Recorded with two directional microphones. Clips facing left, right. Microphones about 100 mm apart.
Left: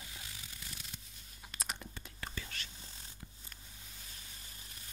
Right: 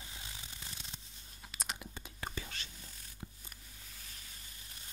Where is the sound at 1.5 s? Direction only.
Centre (ahead or behind).